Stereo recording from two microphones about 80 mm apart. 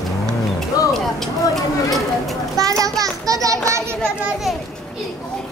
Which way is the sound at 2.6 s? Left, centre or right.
Right.